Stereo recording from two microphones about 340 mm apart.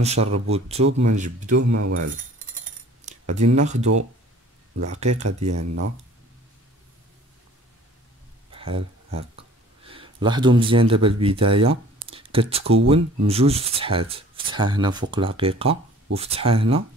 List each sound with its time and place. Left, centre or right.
0.0 s speech: centre
1.6 s speech: right
3.3 s speech: right
3.5 s speech: centre
5.5 s speech: right
8.5 s a sound: centre
9.8 s speech: centre